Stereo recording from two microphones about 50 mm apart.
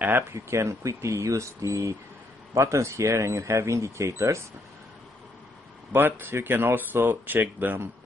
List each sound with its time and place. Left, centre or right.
0.3 s speech: right
5.9 s speech: right